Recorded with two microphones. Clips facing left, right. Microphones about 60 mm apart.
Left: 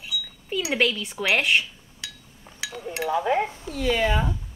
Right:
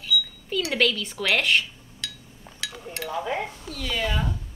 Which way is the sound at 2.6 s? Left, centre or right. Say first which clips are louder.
Left 5 dB; left.